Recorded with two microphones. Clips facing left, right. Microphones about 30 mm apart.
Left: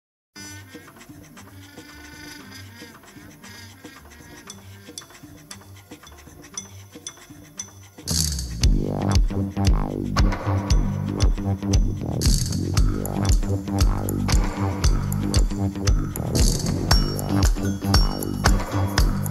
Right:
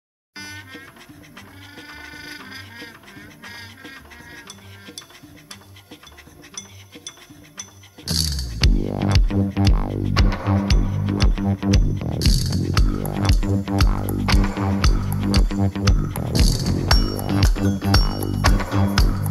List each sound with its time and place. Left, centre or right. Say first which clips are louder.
0.4 s music: right 5 dB; right
7.1 s music: even; right